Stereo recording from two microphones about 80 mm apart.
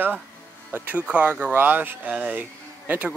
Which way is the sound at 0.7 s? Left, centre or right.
Right.